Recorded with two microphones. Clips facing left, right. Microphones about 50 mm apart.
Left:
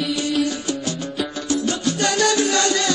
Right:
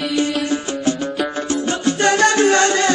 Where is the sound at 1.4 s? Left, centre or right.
Right.